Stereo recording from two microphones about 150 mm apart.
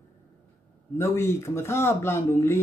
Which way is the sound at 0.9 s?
15° left (ahead or behind).